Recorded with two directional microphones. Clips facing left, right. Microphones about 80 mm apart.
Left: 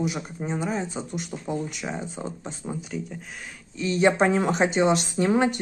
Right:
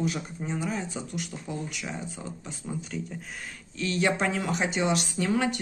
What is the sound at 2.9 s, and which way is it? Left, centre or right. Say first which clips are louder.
Speech: left 3 dB; centre.